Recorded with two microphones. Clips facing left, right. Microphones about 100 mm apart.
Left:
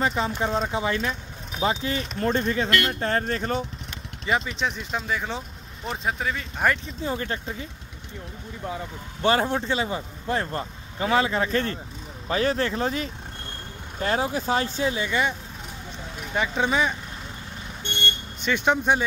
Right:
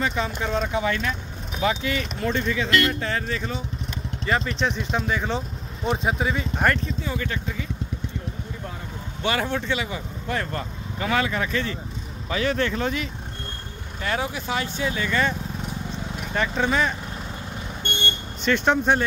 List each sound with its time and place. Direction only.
0.0 s speech: 30° left (ahead or behind); by 3.6 s 50° left (ahead or behind)
4.3 s speech: 10° left (ahead or behind)
5.9 s speech: 10° right (ahead or behind)
7.0 s speech: 35° left (ahead or behind)
9.2 s speech: 35° left (ahead or behind)
11.5 s speech: 45° left (ahead or behind); by 15.0 s 30° left (ahead or behind)
15.0 s speech: 15° left (ahead or behind)
16.3 s speech: 10° left (ahead or behind)
18.4 s speech: 10° left (ahead or behind)